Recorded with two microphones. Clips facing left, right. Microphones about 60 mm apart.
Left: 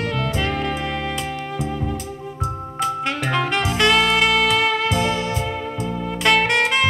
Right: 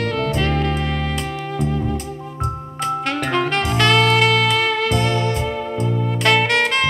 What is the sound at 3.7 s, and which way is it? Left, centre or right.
Music, centre.